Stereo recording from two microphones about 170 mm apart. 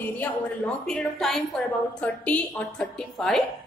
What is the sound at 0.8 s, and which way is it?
A woman's voice, centre (ahead or behind).